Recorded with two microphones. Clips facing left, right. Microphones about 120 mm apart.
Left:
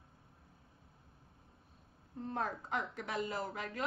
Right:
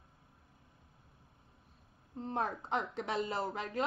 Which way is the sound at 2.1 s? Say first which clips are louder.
Right 2 dB; 20° right (ahead or behind).